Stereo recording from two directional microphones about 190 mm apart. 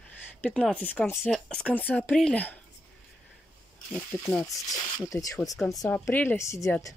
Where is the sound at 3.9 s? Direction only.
10° left (ahead or behind).